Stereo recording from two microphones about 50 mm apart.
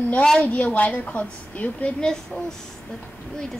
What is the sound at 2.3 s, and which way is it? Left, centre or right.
Speech, left.